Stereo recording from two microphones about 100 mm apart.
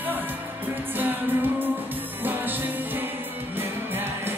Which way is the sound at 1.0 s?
20° right (ahead or behind).